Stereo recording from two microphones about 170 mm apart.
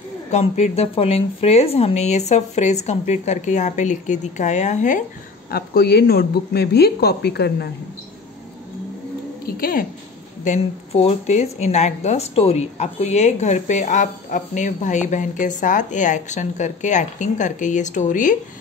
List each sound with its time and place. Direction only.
0.3 s a woman's voice: 40° left (ahead or behind)
5.5 s a woman's voice: 70° left (ahead or behind)
9.6 s a woman's voice: 55° left (ahead or behind)
10.4 s a woman's voice: 40° left (ahead or behind)